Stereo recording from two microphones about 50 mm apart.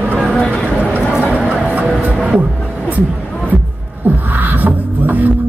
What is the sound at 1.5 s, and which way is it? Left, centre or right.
Music, right.